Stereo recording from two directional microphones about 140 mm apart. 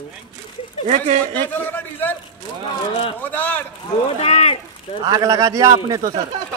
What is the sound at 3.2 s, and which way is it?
Speech, 10° left (ahead or behind).